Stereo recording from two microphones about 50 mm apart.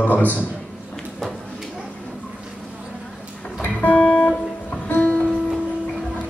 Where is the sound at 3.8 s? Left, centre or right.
Left.